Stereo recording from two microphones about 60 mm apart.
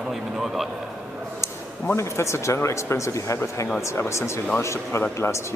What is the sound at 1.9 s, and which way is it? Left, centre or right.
Speech, left.